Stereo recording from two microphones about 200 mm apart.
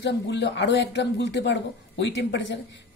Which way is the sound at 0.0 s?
60° left (ahead or behind).